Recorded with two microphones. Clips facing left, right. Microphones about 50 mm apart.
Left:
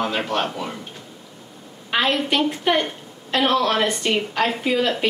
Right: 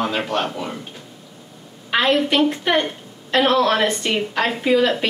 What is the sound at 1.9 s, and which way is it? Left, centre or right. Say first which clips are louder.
A woman's voice: right 3 dB; centre.